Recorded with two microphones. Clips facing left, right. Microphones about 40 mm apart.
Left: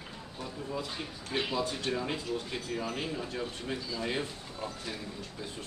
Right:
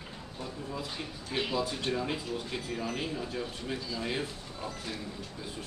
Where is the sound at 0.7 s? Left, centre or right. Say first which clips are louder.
Left 3 dB; centre.